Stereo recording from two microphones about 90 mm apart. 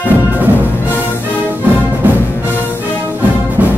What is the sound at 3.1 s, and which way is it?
Music, 20° right (ahead or behind).